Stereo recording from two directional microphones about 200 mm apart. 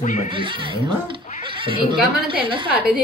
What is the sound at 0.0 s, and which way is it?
Speech, 35° left (ahead or behind).